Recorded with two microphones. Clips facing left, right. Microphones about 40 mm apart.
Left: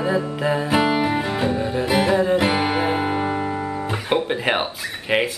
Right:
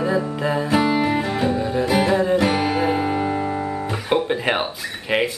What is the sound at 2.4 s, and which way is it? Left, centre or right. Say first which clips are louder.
Music: even; left.